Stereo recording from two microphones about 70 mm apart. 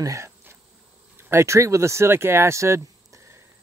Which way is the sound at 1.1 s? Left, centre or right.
Right.